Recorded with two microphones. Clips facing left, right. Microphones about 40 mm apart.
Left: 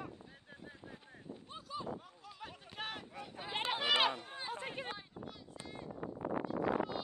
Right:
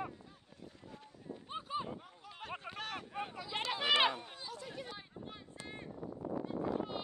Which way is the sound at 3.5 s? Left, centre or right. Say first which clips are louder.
Left 1 dB; left.